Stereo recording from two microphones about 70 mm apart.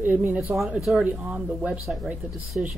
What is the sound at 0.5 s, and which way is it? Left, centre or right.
Speech, right.